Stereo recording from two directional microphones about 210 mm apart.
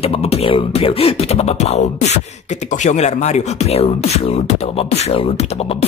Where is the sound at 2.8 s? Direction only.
35° left (ahead or behind).